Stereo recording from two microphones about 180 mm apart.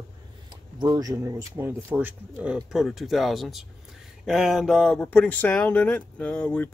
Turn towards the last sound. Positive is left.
turn(degrees=5)  # may be behind; listen again after turning